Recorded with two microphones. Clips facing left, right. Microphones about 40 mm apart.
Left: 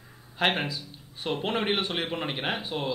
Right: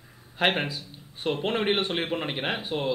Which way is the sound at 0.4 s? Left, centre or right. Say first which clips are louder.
Right 1 dB; centre.